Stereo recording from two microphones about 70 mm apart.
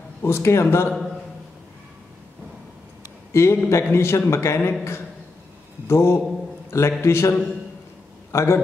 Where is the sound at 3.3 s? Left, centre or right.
Left.